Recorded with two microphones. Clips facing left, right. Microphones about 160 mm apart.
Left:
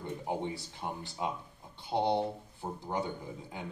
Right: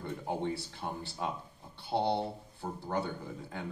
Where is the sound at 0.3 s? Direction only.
15° left (ahead or behind).